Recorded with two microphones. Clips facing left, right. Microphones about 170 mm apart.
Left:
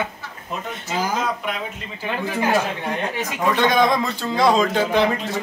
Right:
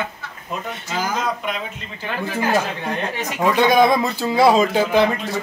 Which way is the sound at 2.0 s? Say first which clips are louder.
Even; 10° left (ahead or behind).